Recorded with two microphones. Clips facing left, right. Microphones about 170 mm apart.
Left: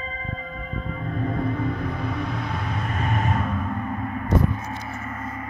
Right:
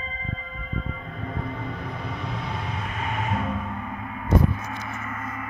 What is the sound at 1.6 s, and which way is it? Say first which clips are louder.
Vehicle: left 6 dB; 25° right (ahead or behind).